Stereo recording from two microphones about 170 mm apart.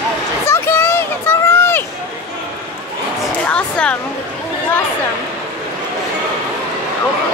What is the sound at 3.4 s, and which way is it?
Speech, 5° left (ahead or behind).